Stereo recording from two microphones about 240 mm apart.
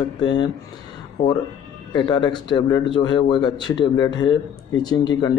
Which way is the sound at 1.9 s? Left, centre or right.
Centre.